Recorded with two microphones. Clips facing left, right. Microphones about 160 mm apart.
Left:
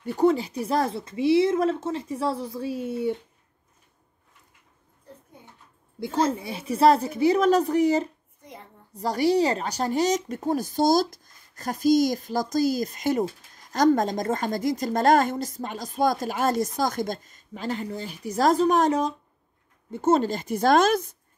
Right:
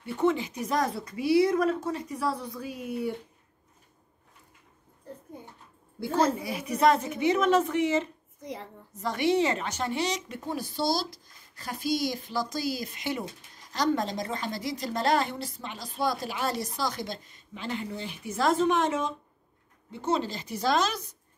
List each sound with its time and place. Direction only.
0.0 s speech: 40° left (ahead or behind)
5.9 s a woman's voice: 20° left (ahead or behind); by 8.1 s 35° left (ahead or behind)
8.4 s a woman's voice: 90° right
8.9 s a woman's voice: 35° left (ahead or behind)